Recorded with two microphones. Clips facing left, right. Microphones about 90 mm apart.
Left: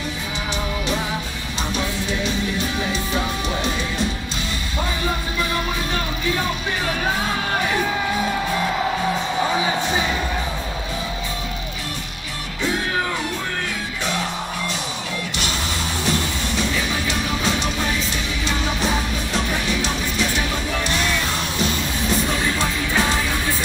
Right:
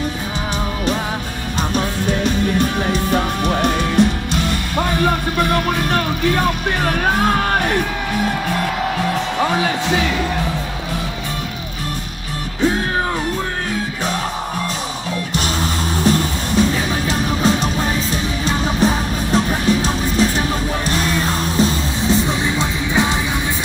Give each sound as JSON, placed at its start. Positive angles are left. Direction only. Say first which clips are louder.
{"t": 1.6, "sound": "music", "louder": "right 5 dB", "side_deg": -50}
{"t": 9.5, "sound": "music", "louder": "right 3 dB", "side_deg": -80}
{"t": 16.0, "sound": "music", "louder": "right 7 dB", "side_deg": -40}
{"t": 22.3, "sound": "music", "louder": "right 2 dB", "side_deg": -20}